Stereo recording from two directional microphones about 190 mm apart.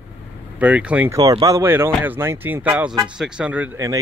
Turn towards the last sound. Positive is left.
turn(degrees=-15)  # may be behind; listen again after turning